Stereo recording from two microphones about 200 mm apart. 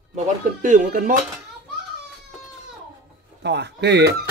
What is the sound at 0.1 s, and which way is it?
Speech, 40° right (ahead or behind).